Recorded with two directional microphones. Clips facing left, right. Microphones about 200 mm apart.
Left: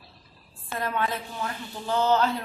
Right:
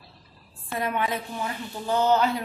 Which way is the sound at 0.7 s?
15° right (ahead or behind).